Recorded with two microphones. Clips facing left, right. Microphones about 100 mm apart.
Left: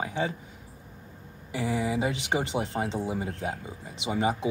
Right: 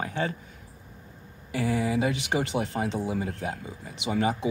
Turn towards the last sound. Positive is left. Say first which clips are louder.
# right 1 dB
turn(degrees=20)  # may be behind; listen again after turning